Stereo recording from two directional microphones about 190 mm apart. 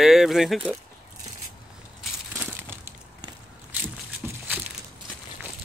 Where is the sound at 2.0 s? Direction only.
5° right (ahead or behind).